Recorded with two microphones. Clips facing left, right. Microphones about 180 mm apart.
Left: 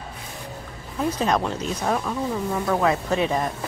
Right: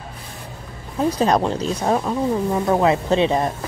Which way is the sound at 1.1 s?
35° right (ahead or behind).